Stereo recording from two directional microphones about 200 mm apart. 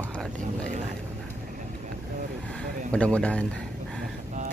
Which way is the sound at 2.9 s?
5° left (ahead or behind).